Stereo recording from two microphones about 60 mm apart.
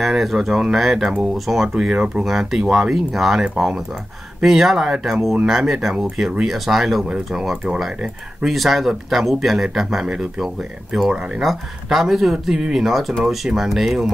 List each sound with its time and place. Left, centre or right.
0.0 s speech: centre
8.5 s speech: centre